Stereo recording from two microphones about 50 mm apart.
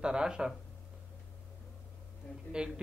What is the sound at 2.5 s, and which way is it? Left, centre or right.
Speech, centre.